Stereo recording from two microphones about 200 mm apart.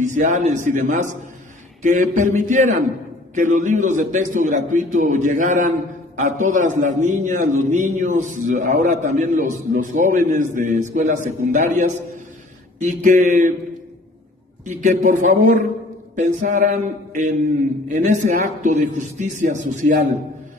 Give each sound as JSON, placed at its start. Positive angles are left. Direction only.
{"t": 0.0, "sound": "a man's voice", "side_deg": -40}
{"t": 14.6, "sound": "a man's voice", "side_deg": -40}